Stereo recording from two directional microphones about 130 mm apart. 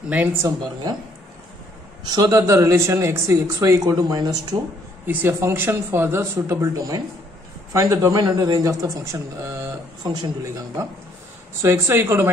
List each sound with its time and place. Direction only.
0.4 s speech: 25° right (ahead or behind)
2.0 s speech: 30° right (ahead or behind)
5.0 s speech: 15° right (ahead or behind)
10.0 s a man's voice: 30° right (ahead or behind)